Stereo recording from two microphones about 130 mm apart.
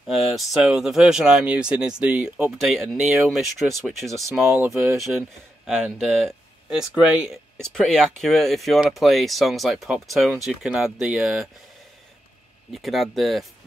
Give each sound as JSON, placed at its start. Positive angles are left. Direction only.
{"t": 0.0, "sound": "speech", "side_deg": 0}
{"t": 4.5, "sound": "speech", "side_deg": -15}
{"t": 4.9, "sound": "speech", "side_deg": 0}
{"t": 7.6, "sound": "speech", "side_deg": 5}
{"t": 12.7, "sound": "speech", "side_deg": 0}